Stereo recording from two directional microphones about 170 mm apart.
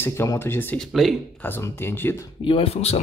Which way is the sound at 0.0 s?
15° left (ahead or behind).